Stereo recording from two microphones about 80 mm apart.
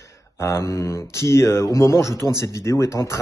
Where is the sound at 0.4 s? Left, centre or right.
Left.